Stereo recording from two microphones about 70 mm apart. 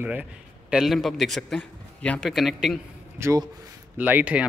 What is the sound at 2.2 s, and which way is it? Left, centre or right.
Speech, centre.